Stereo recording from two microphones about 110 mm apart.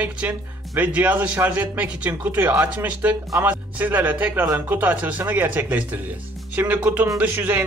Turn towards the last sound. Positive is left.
turn(degrees=-15)  # may be behind; listen again after turning